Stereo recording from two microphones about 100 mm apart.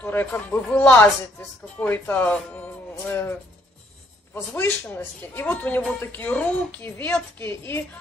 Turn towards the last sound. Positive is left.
turn(degrees=25)  # may be behind; listen again after turning